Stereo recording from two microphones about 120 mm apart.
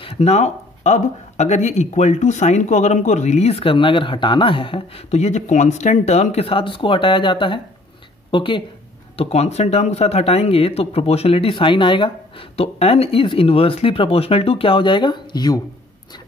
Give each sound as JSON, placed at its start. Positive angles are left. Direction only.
{"t": 0.0, "sound": "speech", "side_deg": 60}
{"t": 9.1, "sound": "speech", "side_deg": 55}